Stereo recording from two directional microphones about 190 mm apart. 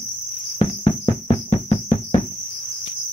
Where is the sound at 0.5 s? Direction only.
35° left (ahead or behind).